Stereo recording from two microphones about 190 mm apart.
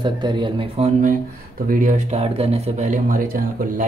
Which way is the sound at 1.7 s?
45° right (ahead or behind).